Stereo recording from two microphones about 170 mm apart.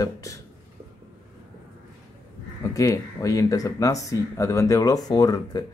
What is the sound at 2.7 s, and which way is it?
Speech, 20° left (ahead or behind).